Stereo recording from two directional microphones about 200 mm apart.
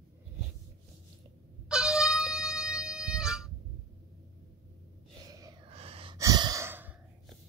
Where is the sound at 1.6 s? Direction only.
5° right (ahead or behind).